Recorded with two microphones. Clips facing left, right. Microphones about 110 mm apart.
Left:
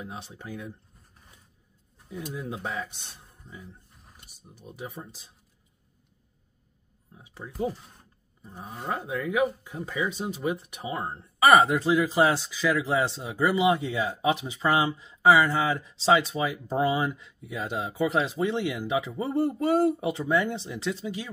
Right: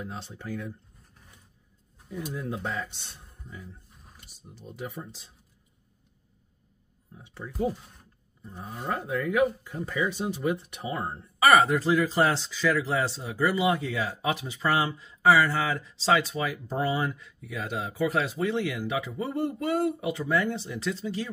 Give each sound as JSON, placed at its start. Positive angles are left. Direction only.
{"t": 0.0, "sound": "speech", "side_deg": 15}
{"t": 2.0, "sound": "speech", "side_deg": 5}
{"t": 4.6, "sound": "speech", "side_deg": 15}
{"t": 7.2, "sound": "speech", "side_deg": 15}